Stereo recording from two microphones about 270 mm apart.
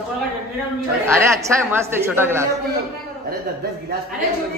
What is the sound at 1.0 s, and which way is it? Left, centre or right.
Speech, centre.